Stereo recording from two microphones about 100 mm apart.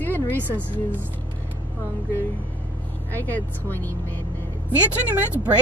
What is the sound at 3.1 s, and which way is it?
Speech, 20° left (ahead or behind).